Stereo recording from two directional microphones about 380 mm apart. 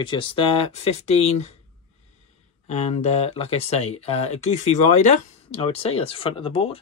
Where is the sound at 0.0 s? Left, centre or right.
Centre.